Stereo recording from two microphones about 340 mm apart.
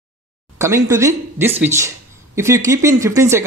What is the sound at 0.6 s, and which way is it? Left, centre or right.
Speech, centre.